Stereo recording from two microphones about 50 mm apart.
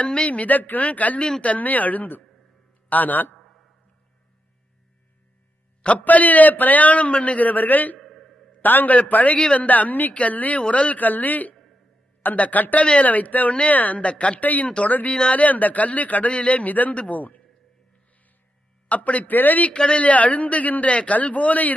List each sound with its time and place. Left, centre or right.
0.0 s a man's voice: left
5.8 s a man's voice: left
8.0 s a sound: centre
8.5 s a man's voice: left
15.0 s a man's voice: left
18.9 s a man's voice: left
19.7 s a man's voice: left